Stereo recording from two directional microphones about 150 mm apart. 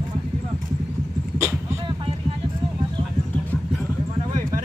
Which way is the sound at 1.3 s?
15° right (ahead or behind).